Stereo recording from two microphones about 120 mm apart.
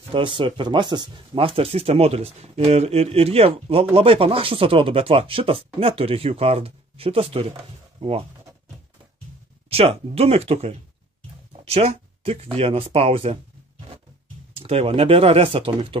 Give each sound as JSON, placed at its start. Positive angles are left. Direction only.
{"t": 0.1, "sound": "speech", "side_deg": -45}
{"t": 9.7, "sound": "speech", "side_deg": -55}
{"t": 14.6, "sound": "speech", "side_deg": -55}